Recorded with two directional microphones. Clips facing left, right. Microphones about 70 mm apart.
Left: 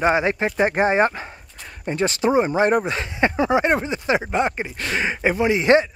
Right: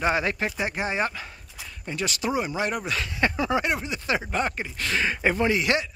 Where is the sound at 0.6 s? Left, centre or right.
Left; by 5.6 s centre.